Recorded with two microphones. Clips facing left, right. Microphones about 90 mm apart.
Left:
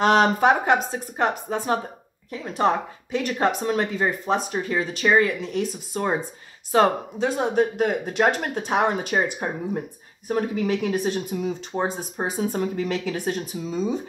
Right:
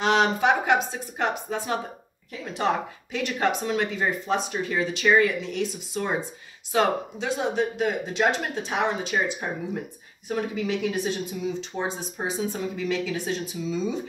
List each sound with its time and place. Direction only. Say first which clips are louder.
0.0 s speech: left 4 dB; 40° left (ahead or behind)